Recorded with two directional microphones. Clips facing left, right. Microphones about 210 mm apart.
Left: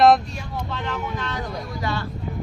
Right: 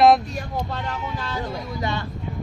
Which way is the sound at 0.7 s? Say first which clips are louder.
Left 1 dB; 35° right (ahead or behind).